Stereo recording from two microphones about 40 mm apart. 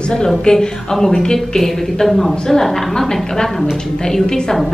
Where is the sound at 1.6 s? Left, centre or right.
Centre.